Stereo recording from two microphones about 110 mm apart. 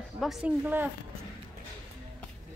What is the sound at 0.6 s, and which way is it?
Speech, 15° right (ahead or behind).